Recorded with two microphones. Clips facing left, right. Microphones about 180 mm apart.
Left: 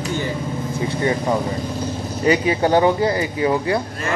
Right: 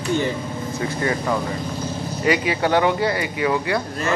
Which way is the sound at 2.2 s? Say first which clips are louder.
Left 3 dB; 35° left (ahead or behind).